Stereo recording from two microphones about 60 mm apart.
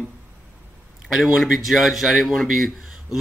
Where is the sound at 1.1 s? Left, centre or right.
Centre.